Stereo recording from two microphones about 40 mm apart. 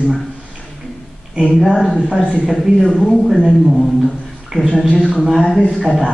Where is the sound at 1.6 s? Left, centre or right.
Centre.